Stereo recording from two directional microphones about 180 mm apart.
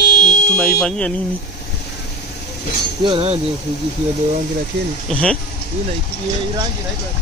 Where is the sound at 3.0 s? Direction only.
30° right (ahead or behind).